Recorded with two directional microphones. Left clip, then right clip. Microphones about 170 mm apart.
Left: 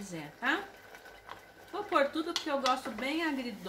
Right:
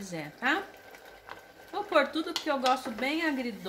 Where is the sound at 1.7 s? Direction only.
45° right (ahead or behind).